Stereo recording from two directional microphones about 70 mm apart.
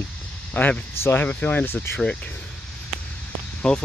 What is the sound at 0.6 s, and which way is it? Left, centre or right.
Speech, left.